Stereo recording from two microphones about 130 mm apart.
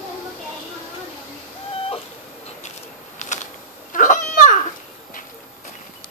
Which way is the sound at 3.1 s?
65° left (ahead or behind).